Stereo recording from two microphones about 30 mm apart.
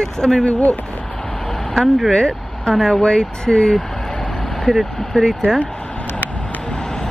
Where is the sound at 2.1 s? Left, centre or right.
Left; by 5.3 s centre.